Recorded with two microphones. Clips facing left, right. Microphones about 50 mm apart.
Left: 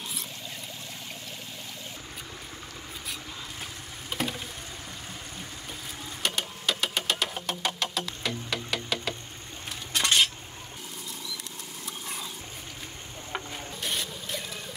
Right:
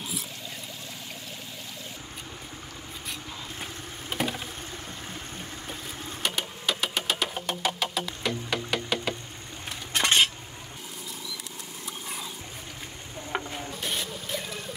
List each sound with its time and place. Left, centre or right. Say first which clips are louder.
4.1 s vehicle: right 2 dB; centre
6.2 s music: even; centre
9.9 s cutlery: right 2 dB; right
11.8 s clip-clop: even; centre
13.3 s a sound: right 4 dB; centre